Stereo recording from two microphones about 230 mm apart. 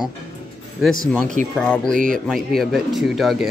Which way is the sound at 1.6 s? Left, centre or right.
Centre.